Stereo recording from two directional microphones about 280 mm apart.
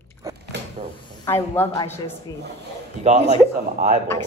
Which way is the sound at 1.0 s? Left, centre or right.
Centre.